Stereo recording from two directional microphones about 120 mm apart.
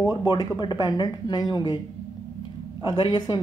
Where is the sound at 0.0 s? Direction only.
35° left (ahead or behind).